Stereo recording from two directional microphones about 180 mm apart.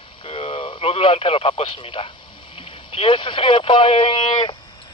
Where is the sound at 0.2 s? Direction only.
30° left (ahead or behind).